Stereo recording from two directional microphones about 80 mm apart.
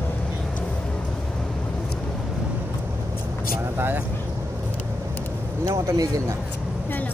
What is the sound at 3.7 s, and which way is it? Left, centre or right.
Vehicle, right.